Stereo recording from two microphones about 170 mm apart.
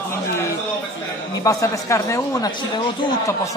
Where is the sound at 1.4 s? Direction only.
20° left (ahead or behind).